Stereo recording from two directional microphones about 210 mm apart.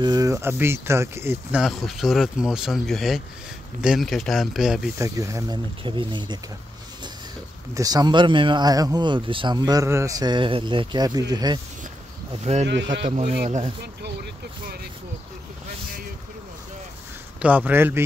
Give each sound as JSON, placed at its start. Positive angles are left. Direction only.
{"t": 0.0, "sound": "speech", "side_deg": -20}
{"t": 4.9, "sound": "speech", "side_deg": -15}
{"t": 7.7, "sound": "speech", "side_deg": -15}
{"t": 12.5, "sound": "speech", "side_deg": -30}
{"t": 13.3, "sound": "speech", "side_deg": -45}
{"t": 17.4, "sound": "speech", "side_deg": -5}